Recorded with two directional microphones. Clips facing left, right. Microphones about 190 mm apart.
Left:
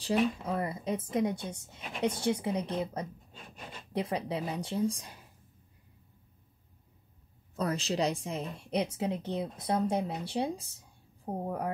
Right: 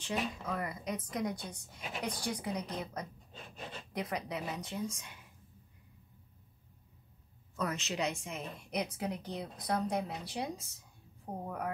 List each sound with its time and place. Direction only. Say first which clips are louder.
0.0 s a woman's voice: left 8 dB; 30° left (ahead or behind)
7.5 s a woman's voice: left 5 dB; 35° left (ahead or behind)